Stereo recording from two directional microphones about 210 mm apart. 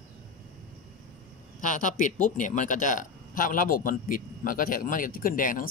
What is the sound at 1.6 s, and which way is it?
Speech, 35° left (ahead or behind).